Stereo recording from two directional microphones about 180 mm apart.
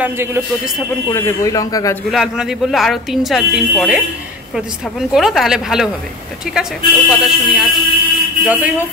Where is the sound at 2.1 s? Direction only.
Centre (ahead or behind).